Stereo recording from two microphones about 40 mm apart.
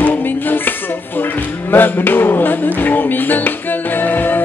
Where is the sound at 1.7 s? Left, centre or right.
Left.